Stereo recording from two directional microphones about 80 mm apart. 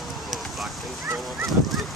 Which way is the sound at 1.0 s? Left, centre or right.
Right.